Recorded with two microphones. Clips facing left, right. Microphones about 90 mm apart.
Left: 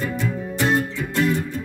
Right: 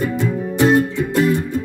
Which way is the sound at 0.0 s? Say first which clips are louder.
Right 5 dB; 15° right (ahead or behind).